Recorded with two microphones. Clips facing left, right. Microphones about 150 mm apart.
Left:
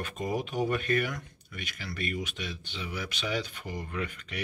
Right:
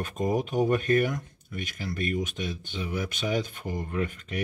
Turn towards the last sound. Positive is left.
turn(degrees=-45)  # may be behind; listen again after turning